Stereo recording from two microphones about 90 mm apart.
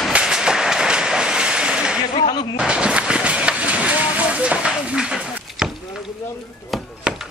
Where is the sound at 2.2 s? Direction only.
65° left (ahead or behind).